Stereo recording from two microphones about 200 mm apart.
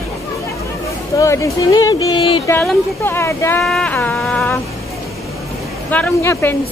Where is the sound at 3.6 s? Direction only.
5° left (ahead or behind).